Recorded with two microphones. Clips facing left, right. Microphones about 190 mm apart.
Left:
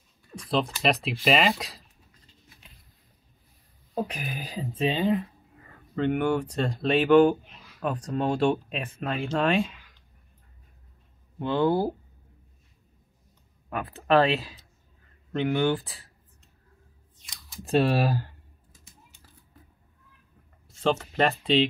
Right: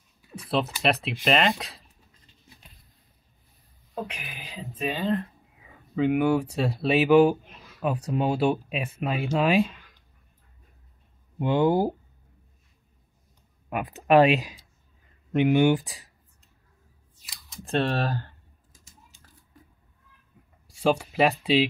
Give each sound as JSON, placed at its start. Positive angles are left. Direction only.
{"t": 0.3, "sound": "speech", "side_deg": -5}
{"t": 3.9, "sound": "speech", "side_deg": 40}
{"t": 4.8, "sound": "speech", "side_deg": 20}
{"t": 5.1, "sound": "speech", "side_deg": 0}
{"t": 11.3, "sound": "speech", "side_deg": -15}
{"t": 13.7, "sound": "speech", "side_deg": -15}
{"t": 17.1, "sound": "a sound", "side_deg": -5}
{"t": 17.9, "sound": "speech", "side_deg": 10}
{"t": 18.7, "sound": "typing", "side_deg": 60}
{"t": 20.6, "sound": "speech", "side_deg": -10}